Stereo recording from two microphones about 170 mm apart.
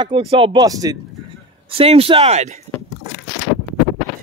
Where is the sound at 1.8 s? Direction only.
35° right (ahead or behind).